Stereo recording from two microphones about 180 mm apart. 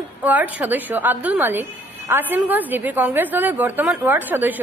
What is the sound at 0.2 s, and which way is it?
A woman's voice, 10° right (ahead or behind).